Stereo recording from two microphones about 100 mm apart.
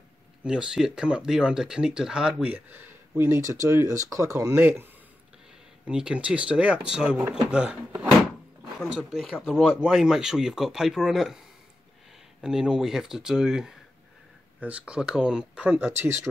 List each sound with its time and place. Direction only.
0.4 s speech: 10° right (ahead or behind)
5.9 s speech: 5° right (ahead or behind)
12.4 s speech: 5° right (ahead or behind)